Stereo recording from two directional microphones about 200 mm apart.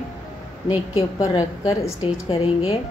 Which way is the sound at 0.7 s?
30° left (ahead or behind).